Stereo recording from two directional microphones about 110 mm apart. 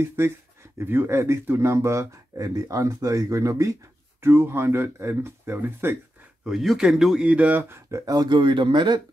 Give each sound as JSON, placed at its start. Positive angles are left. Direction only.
{"t": 0.0, "sound": "speech", "side_deg": -20}
{"t": 6.4, "sound": "speech", "side_deg": 0}
{"t": 7.9, "sound": "speech", "side_deg": -30}